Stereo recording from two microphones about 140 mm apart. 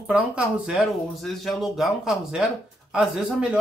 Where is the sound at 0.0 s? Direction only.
5° right (ahead or behind).